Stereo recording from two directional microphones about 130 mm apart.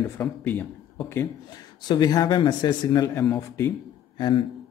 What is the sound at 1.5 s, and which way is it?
A man's voice, 30° left (ahead or behind).